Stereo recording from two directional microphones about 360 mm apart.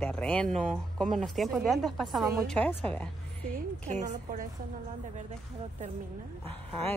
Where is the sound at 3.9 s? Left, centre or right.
Centre.